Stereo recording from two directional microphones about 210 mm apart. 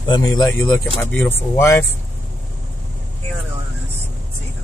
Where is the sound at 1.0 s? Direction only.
10° left (ahead or behind).